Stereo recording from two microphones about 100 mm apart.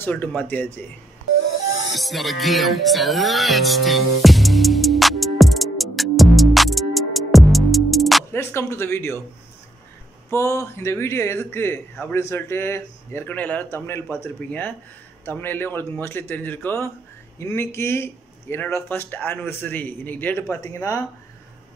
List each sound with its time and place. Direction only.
0.0 s speech: 15° left (ahead or behind)
2.0 s music: centre (ahead or behind)
8.3 s speech: 25° left (ahead or behind)
10.3 s speech: 30° left (ahead or behind)